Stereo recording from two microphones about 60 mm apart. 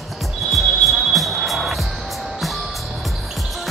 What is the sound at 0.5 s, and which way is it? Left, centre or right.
Music, centre.